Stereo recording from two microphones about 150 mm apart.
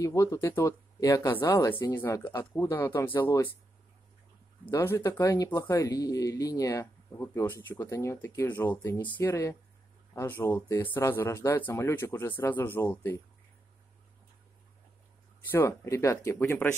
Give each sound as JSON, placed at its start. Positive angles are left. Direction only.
{"t": 0.0, "sound": "speech", "side_deg": 20}
{"t": 4.6, "sound": "speech", "side_deg": 20}
{"t": 15.5, "sound": "speech", "side_deg": 15}